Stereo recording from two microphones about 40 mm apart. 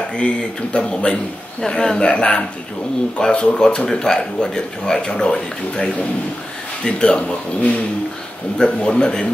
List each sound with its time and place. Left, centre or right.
0.7 s speech: left
2.0 s speech: left